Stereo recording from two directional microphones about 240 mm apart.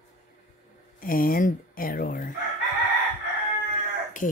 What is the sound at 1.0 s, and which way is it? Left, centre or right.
Speech, left.